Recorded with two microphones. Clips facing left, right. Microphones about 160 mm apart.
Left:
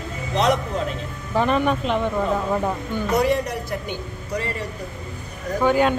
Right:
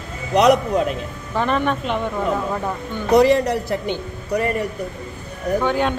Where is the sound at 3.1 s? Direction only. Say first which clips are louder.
Right 7 dB; 70° right (ahead or behind).